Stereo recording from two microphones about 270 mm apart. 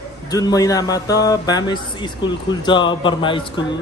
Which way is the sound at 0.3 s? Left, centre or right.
Centre.